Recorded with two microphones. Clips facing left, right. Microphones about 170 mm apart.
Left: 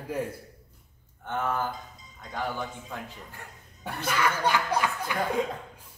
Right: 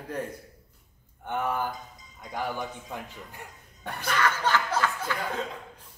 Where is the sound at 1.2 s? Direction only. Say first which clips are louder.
Even; 15° right (ahead or behind).